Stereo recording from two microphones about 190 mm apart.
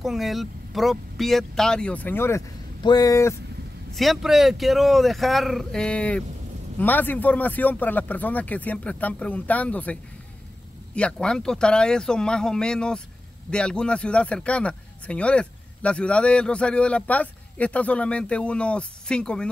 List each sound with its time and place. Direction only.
0.0 s a man's voice: centre (ahead or behind); by 3.3 s 15° left (ahead or behind)
3.9 s a man's voice: centre (ahead or behind)
11.0 s a man's voice: 5° left (ahead or behind)